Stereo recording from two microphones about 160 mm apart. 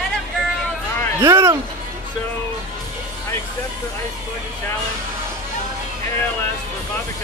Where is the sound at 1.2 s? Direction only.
15° right (ahead or behind).